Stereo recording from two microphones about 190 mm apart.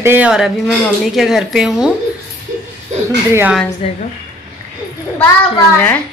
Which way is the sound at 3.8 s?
30° left (ahead or behind).